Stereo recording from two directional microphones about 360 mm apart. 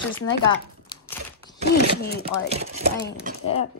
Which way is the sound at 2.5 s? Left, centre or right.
Centre.